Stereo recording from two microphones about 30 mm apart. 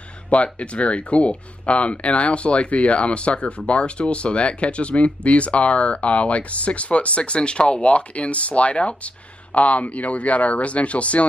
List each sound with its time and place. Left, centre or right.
0.3 s speech: left
7.8 s speech: left